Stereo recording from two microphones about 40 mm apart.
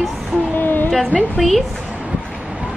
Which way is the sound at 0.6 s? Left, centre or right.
Left.